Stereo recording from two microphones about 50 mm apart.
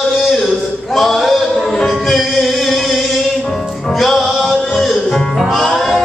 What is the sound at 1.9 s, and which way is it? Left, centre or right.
Music, centre.